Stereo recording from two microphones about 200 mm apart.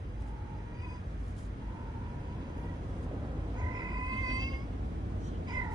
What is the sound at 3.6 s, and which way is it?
Cat, 20° right (ahead or behind).